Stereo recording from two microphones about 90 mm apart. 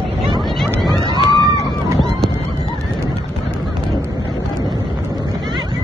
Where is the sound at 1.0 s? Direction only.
55° left (ahead or behind).